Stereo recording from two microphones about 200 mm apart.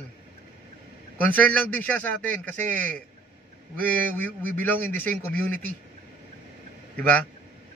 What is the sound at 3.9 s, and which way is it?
Speech, 45° right (ahead or behind).